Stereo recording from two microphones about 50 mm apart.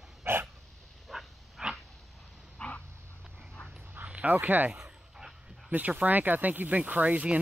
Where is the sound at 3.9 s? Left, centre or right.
Right.